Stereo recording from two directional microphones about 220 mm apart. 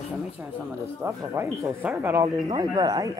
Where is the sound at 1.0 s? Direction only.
10° right (ahead or behind).